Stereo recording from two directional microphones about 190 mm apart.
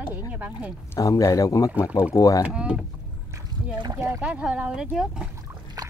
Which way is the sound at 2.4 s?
5° right (ahead or behind).